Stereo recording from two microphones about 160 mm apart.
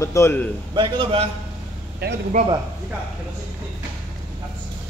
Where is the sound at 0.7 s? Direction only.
30° right (ahead or behind).